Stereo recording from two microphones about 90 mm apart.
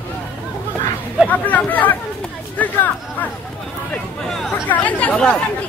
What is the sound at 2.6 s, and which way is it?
Chatter, 15° left (ahead or behind).